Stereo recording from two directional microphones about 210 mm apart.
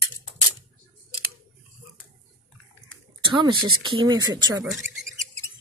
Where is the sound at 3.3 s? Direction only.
25° right (ahead or behind).